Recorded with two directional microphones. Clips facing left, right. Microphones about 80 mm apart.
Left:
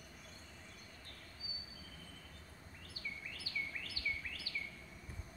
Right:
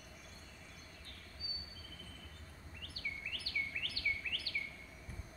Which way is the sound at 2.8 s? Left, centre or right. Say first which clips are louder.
Right 3 dB; left.